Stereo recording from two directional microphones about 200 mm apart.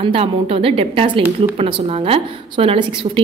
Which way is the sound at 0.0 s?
30° right (ahead or behind).